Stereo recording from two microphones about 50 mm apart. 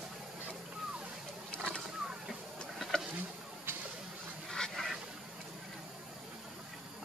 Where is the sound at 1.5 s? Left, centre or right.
Centre.